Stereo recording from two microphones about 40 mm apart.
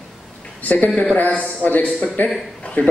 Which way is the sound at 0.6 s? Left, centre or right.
Left.